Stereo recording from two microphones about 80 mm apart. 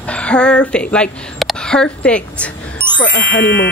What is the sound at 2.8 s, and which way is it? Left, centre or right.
Music, right.